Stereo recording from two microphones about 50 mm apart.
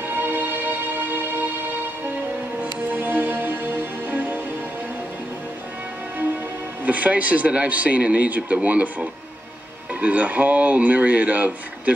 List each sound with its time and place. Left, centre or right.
0.0 s music: right
2.6 s music: right
6.8 s speech: right